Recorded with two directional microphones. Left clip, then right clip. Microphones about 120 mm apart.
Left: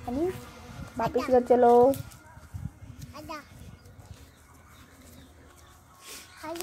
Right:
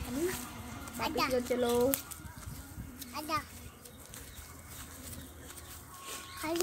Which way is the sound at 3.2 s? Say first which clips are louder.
Right 5 dB; 20° left (ahead or behind).